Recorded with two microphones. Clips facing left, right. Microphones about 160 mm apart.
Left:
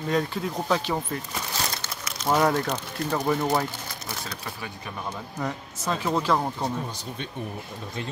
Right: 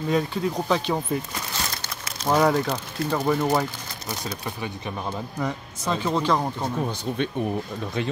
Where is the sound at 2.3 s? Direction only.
Centre (ahead or behind).